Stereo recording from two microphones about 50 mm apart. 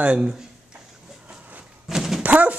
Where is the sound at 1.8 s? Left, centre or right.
Centre.